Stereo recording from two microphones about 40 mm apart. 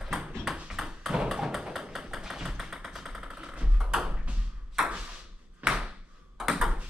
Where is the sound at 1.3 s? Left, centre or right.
Centre.